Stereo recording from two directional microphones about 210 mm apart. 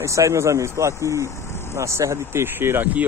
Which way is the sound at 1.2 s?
15° left (ahead or behind).